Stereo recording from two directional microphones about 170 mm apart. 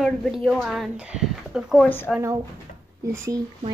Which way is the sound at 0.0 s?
Centre (ahead or behind).